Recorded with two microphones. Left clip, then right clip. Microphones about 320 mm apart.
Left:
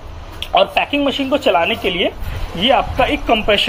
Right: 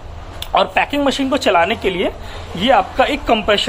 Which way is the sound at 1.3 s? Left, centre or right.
Centre.